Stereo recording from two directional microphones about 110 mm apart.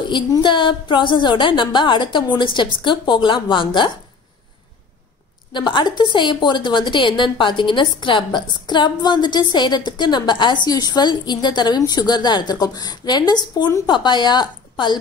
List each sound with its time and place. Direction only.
0.1 s a woman's voice: 45° left (ahead or behind)
5.5 s a woman's voice: 45° left (ahead or behind)